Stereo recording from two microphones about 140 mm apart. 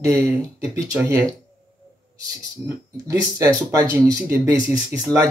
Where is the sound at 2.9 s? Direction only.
25° right (ahead or behind).